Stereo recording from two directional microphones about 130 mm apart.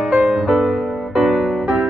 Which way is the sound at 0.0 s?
5° right (ahead or behind).